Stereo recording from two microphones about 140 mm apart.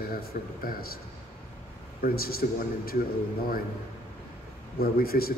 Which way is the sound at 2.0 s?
90° left.